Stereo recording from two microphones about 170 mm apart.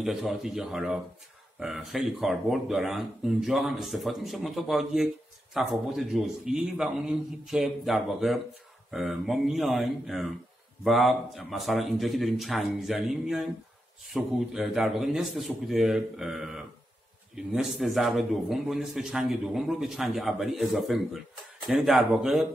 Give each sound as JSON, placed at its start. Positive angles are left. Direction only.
{"t": 0.0, "sound": "speech", "side_deg": 0}